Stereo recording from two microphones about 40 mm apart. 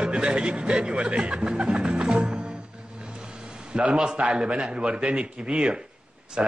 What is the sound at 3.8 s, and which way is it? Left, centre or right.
A man's voice, right.